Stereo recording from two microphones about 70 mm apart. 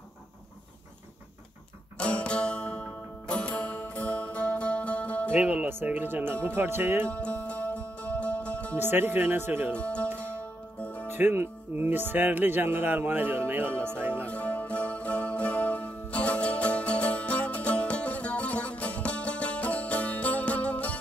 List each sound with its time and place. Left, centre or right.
2.0 s music: centre
5.3 s speech: right
7.1 s music: centre
8.7 s speech: right
9.8 s speech: centre
10.3 s music: centre
11.1 s speech: right
14.2 s music: centre